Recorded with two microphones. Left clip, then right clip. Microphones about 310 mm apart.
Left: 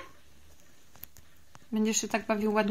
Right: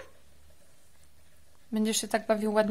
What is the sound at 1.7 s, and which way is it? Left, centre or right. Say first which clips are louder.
A woman's voice: right 1 dB; centre.